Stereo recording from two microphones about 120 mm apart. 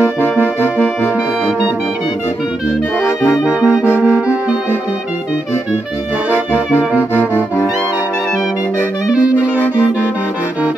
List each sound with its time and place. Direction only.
0.2 s music: 20° left (ahead or behind)
3.3 s brass instrument: 10° right (ahead or behind)
6.3 s brass instrument: 10° right (ahead or behind)
7.2 s brass instrument: 15° left (ahead or behind)